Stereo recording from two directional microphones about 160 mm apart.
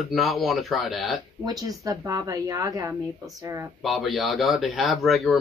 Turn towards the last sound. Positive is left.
turn(degrees=0)  # may be behind; listen again after turning